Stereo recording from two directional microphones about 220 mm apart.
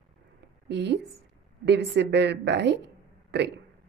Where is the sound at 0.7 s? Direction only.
50° right (ahead or behind).